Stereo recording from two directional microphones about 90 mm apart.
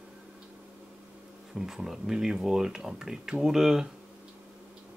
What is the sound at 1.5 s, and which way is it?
Speech, 5° right (ahead or behind).